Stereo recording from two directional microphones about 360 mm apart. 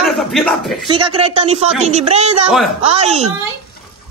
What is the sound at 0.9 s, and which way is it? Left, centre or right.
Speech, centre.